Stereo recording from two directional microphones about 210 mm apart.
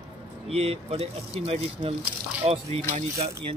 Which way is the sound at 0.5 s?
30° right (ahead or behind).